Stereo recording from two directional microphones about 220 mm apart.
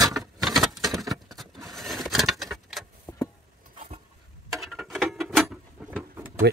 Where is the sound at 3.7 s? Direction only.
30° right (ahead or behind).